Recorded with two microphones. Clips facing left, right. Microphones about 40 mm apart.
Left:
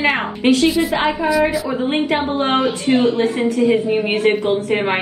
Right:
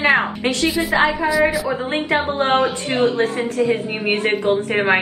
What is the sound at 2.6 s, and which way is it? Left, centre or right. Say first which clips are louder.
A woman's voice: left 2 dB; right.